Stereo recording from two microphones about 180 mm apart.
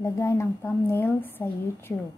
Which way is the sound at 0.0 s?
15° left (ahead or behind).